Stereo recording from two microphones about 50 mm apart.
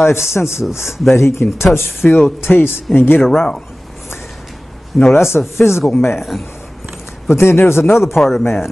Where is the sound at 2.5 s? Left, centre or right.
Left.